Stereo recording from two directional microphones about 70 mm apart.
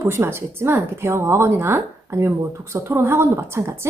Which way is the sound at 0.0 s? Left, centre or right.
Right.